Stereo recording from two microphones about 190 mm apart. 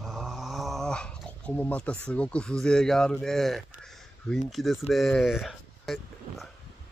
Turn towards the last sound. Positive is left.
turn(degrees=0)  # may be behind; listen again after turning